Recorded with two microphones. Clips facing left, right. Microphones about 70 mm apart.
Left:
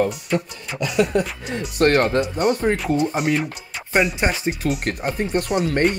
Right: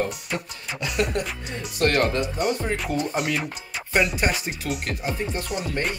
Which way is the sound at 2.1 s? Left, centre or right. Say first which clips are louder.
Left 5 dB; left.